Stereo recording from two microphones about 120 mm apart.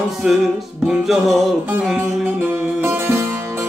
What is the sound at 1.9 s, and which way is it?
Music, 20° right (ahead or behind).